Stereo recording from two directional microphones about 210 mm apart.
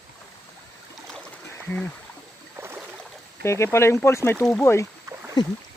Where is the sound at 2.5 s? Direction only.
10° right (ahead or behind).